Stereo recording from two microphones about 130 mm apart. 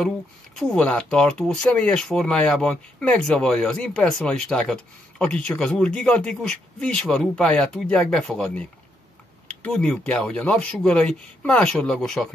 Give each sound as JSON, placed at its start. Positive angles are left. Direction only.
{"t": 0.6, "sound": "speech", "side_deg": 5}